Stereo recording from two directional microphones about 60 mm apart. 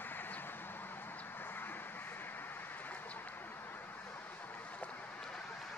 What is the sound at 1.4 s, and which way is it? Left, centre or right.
Vehicle, left.